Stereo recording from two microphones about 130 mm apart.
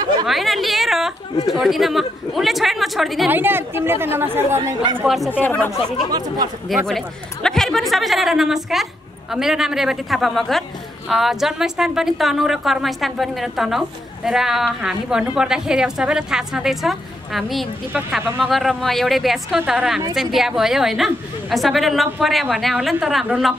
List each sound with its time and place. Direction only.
0.3 s a sound: centre (ahead or behind)
1.5 s a woman's voice: centre (ahead or behind)
3.3 s a woman's voice: 15° right (ahead or behind)
5.0 s a woman's voice: centre (ahead or behind)
5.4 s speech: 15° left (ahead or behind)
6.1 s speech: 30° right (ahead or behind)
6.9 s a woman's voice: 5° left (ahead or behind)
17.9 s a woman's voice: 15° right (ahead or behind)
18.4 s a woman's voice: centre (ahead or behind)